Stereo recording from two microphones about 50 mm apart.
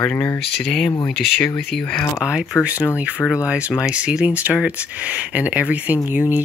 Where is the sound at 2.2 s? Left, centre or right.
Centre.